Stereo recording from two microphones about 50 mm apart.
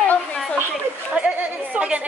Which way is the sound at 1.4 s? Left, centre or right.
Right.